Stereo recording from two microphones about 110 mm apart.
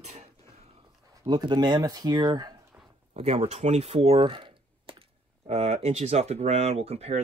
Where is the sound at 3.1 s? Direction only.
75° right (ahead or behind).